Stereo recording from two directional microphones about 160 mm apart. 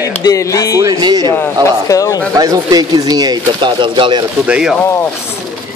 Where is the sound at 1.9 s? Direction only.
20° left (ahead or behind).